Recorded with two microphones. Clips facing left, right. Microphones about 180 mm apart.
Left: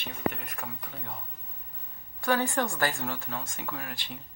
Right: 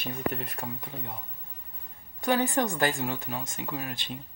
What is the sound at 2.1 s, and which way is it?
Speech, 20° right (ahead or behind).